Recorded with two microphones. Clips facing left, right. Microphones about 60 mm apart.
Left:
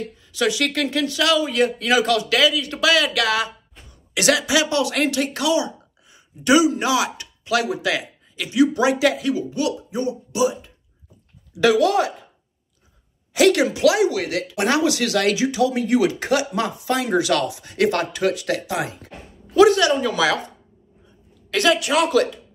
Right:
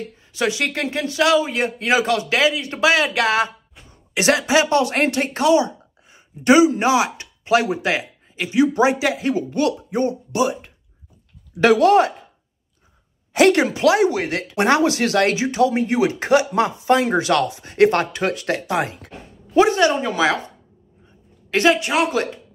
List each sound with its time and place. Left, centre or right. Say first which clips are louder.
0.3 s speech: even; right
9.2 s speech: right 2 dB; right
11.5 s speech: right 3 dB; right
13.3 s speech: right 1 dB; right